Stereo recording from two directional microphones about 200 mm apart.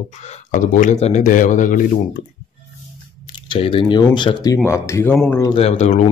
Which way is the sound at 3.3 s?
25° left (ahead or behind).